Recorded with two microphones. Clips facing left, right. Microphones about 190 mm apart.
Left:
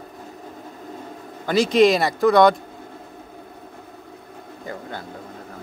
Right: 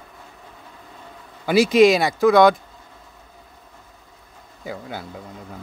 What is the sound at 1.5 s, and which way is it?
Speech, 5° right (ahead or behind).